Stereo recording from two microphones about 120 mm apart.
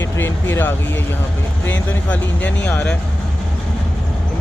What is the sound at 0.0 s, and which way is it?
Speech, 20° left (ahead or behind).